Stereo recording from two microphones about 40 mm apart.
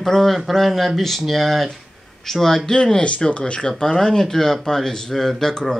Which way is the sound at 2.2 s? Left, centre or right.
Centre.